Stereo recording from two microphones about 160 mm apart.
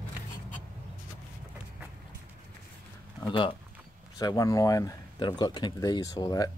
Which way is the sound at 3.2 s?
30° left (ahead or behind).